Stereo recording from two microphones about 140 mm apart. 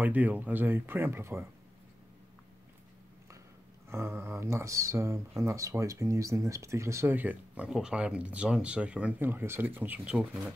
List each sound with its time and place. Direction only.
0.0 s speech: 10° right (ahead or behind)
3.9 s speech: 20° right (ahead or behind)